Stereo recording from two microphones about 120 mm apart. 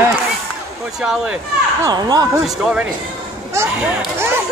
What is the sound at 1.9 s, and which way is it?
Speech, 35° right (ahead or behind).